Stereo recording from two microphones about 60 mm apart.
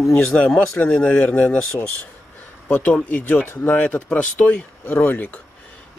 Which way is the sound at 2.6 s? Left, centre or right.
Centre.